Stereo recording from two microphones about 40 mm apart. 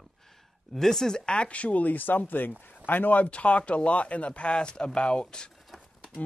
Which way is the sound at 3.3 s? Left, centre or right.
Left.